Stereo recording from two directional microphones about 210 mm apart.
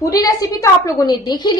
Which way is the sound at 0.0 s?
15° left (ahead or behind).